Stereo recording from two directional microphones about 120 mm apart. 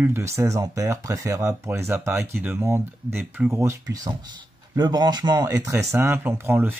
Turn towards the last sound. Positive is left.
turn(degrees=-15)  # may be behind; listen again after turning